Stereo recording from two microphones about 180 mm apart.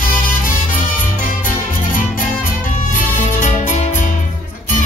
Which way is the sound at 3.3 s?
45° left (ahead or behind).